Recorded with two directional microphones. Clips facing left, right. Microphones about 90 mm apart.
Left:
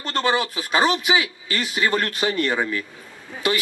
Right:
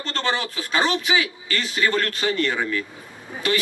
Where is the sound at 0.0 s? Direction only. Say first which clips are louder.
Left 3 dB; 15° left (ahead or behind).